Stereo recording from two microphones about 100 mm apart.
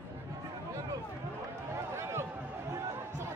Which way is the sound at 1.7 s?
25° right (ahead or behind).